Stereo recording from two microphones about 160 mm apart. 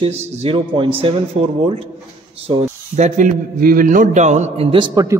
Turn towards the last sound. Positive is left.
turn(degrees=-20)  # may be behind; listen again after turning